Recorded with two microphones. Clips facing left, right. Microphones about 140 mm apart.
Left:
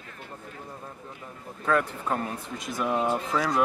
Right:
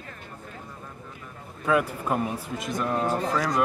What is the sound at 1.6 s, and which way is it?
Speech, 5° right (ahead or behind).